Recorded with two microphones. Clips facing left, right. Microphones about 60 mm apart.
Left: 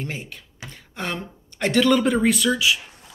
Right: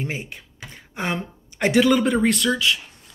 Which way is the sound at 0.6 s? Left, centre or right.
Centre.